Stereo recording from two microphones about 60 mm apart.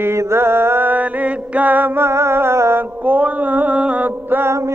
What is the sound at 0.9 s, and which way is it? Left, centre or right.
Music, right.